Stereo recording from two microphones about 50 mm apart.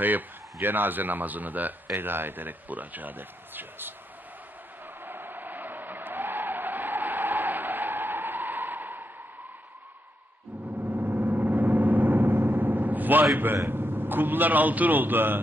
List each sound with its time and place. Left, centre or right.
0.0 s speech: right
5.0 s skidding: right
10.8 s vehicle: right
13.7 s speech: right